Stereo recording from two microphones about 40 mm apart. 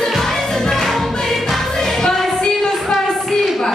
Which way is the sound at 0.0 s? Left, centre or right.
Centre.